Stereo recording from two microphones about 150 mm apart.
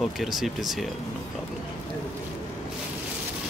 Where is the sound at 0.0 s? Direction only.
Centre (ahead or behind).